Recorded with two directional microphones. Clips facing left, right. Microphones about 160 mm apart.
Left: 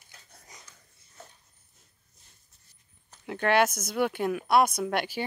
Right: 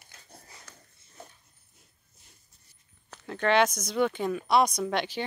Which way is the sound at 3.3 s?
10° left (ahead or behind).